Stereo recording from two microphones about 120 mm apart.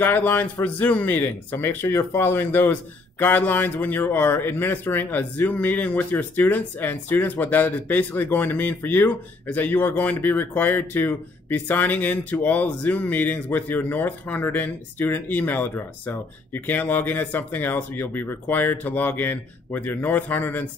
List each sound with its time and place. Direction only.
0.0 s speech: 15° left (ahead or behind)